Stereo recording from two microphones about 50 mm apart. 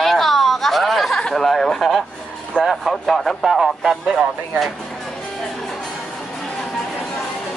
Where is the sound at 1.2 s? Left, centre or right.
Centre.